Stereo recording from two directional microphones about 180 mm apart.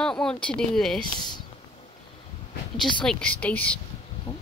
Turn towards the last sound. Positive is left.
turn(degrees=25)  # may be behind; listen again after turning